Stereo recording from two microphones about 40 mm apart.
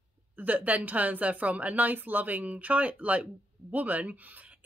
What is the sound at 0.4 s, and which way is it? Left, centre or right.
Speech, right.